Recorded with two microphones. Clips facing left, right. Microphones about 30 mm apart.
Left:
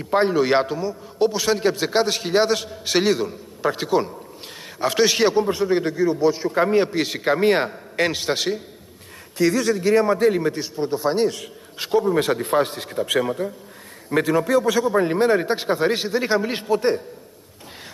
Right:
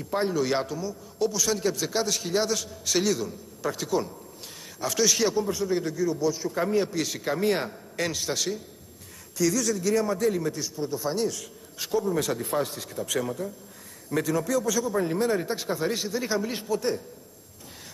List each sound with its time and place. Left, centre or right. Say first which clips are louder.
0.0 s a man's voice: left 7 dB; left